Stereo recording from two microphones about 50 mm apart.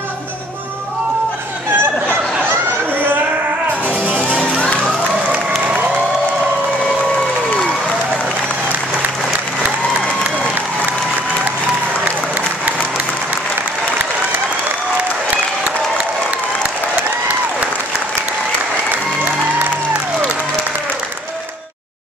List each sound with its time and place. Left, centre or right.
1.8 s turkey: right
3.8 s music: right
4.4 s music: left